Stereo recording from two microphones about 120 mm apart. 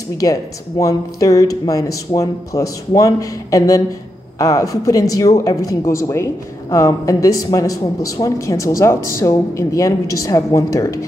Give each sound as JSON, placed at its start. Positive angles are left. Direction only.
{"t": 0.2, "sound": "speech", "side_deg": 30}